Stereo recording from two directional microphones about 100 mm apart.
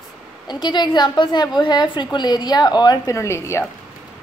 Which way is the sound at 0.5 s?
45° left (ahead or behind).